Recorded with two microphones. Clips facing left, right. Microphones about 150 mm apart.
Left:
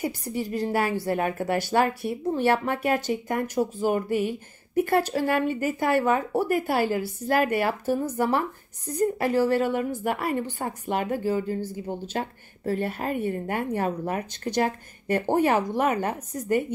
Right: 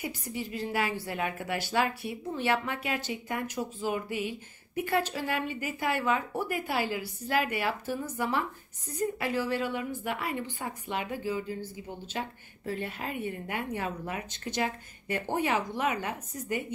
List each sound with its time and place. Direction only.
0.0 s a woman's voice: 45° left (ahead or behind)